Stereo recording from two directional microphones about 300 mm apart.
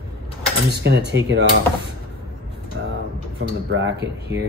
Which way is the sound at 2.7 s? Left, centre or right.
Right.